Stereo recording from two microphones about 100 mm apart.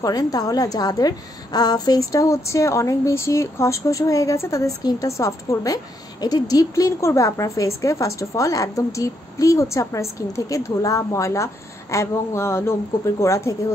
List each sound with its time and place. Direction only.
0.0 s a woman's voice: 40° left (ahead or behind)